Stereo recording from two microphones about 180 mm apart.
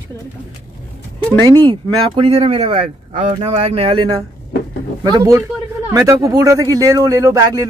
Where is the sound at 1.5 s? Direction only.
25° right (ahead or behind).